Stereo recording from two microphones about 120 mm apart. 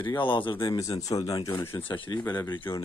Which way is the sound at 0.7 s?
30° left (ahead or behind).